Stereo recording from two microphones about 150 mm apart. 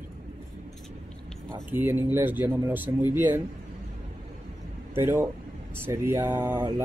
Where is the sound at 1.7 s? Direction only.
15° right (ahead or behind).